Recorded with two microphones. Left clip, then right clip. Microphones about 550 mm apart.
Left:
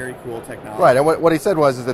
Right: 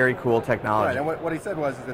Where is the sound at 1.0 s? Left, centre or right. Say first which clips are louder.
Left 12 dB; left.